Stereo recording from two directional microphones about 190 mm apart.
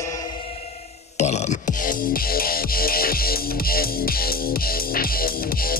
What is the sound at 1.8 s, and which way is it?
Music, 50° left (ahead or behind).